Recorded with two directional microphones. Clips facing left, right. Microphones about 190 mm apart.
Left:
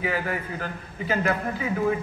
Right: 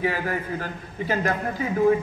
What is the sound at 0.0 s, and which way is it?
A woman's voice, 40° right (ahead or behind).